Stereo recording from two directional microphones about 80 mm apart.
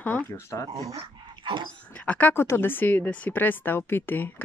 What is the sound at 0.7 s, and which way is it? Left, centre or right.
Speech, right.